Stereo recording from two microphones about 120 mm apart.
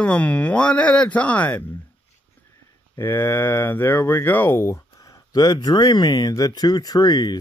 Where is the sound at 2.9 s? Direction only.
20° left (ahead or behind).